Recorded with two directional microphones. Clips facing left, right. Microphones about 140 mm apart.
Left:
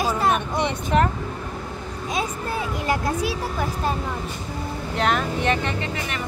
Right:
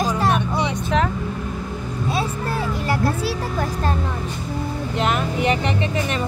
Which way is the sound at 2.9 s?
15° left (ahead or behind).